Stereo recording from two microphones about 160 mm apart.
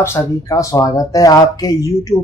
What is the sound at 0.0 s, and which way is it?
Speech, 20° left (ahead or behind).